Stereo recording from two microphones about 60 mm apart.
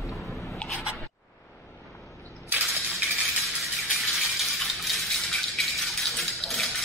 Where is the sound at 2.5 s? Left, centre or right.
Right.